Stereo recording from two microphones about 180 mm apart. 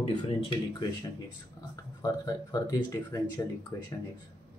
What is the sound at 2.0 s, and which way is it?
Speech, 20° left (ahead or behind).